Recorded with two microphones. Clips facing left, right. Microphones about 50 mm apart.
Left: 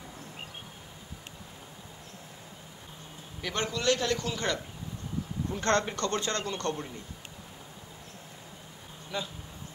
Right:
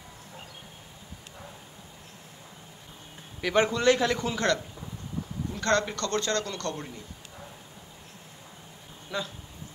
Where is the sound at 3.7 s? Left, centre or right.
Right.